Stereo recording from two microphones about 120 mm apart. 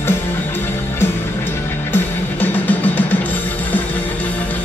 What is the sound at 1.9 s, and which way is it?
Music, 15° left (ahead or behind).